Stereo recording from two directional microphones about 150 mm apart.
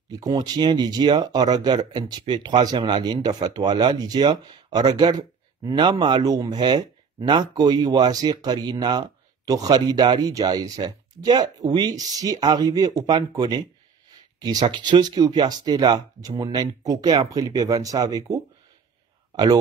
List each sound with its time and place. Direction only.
0.1 s speech: 25° right (ahead or behind)